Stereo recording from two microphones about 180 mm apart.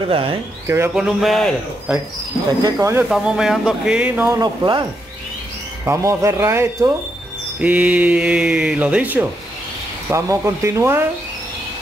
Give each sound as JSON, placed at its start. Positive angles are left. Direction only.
{"t": 0.1, "sound": "speech", "side_deg": -30}
{"t": 0.7, "sound": "speech", "side_deg": -15}
{"t": 0.9, "sound": "speech", "side_deg": 0}
{"t": 2.6, "sound": "speech", "side_deg": -15}
{"t": 3.1, "sound": "speech", "side_deg": -5}
{"t": 4.4, "sound": "speech", "side_deg": -25}
{"t": 5.9, "sound": "speech", "side_deg": -15}